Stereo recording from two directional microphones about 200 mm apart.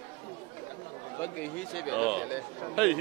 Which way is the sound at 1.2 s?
5° left (ahead or behind).